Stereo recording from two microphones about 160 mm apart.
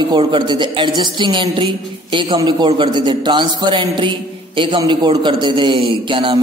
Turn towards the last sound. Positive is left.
turn(degrees=-35)  # may be behind; listen again after turning